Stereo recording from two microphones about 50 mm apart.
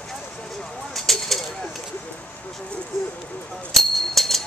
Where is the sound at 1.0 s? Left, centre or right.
Centre.